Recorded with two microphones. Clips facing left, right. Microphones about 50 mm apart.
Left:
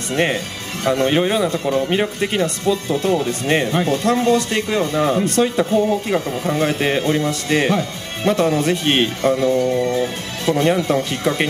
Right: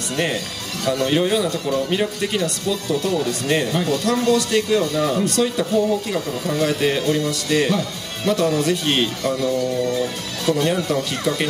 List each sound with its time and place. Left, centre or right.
0.1 s speech: left